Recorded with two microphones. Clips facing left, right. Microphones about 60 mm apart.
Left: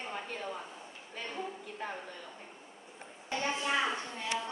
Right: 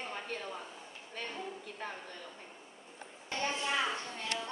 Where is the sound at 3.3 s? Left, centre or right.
Centre.